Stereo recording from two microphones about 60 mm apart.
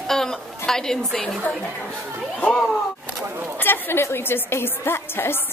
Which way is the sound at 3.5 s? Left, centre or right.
Left.